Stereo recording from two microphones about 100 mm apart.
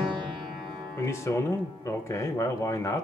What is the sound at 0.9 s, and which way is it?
Music, 25° left (ahead or behind).